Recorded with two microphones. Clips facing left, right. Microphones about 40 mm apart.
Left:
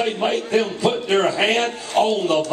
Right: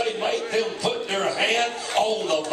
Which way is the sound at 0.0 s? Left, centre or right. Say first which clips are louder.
Left 3 dB; left.